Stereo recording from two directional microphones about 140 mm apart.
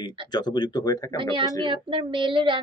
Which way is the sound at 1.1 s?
40° right (ahead or behind).